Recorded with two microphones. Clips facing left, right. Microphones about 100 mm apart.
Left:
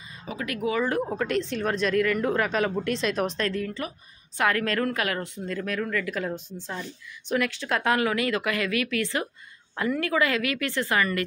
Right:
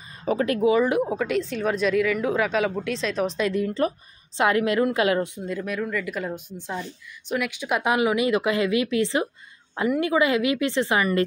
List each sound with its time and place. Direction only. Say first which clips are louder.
0.1 s a sound: right 11 dB; 45° right (ahead or behind)
0.5 s a woman's voice: right 5 dB; 25° right (ahead or behind); by 3.3 s 5° left (ahead or behind)
3.3 s a woman's voice: right 5 dB; 10° right (ahead or behind)